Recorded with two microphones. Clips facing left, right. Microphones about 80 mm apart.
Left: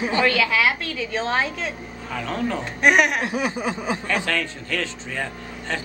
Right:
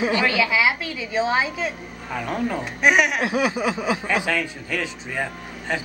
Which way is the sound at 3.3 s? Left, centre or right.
Right.